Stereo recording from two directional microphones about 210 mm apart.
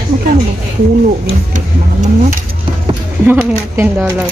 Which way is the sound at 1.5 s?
35° right (ahead or behind).